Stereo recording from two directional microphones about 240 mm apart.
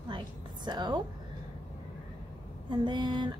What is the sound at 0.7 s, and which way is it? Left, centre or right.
Speech, centre.